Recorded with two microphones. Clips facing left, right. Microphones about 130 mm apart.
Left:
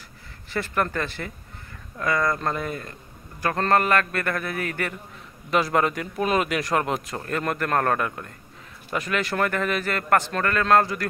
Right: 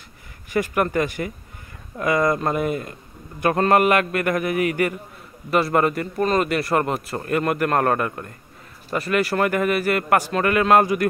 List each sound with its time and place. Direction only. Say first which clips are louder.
0.5 s a man's voice: right 5 dB; 15° right (ahead or behind)